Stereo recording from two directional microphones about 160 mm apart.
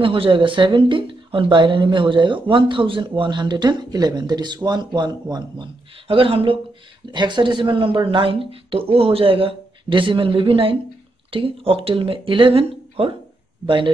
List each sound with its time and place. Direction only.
0.0 s speech: 35° right (ahead or behind)